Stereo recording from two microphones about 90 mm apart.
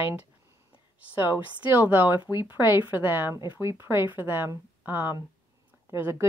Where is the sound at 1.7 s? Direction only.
25° right (ahead or behind).